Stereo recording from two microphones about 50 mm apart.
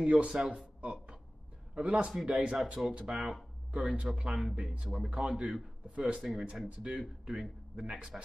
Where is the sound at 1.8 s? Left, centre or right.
Right.